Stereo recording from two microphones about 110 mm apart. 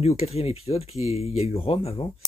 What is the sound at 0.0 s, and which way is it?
Speech, 70° left (ahead or behind).